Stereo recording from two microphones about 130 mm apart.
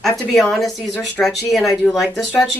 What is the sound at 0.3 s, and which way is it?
Speech, centre (ahead or behind).